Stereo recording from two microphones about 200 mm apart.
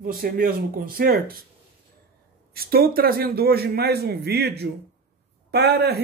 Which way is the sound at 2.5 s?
50° right (ahead or behind).